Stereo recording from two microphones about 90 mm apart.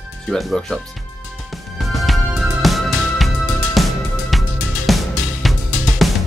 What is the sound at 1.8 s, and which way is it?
Music, centre (ahead or behind).